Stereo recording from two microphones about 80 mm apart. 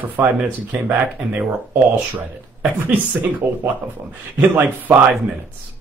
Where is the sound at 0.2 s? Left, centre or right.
Centre.